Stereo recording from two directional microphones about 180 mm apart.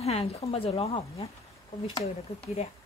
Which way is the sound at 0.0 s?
35° left (ahead or behind).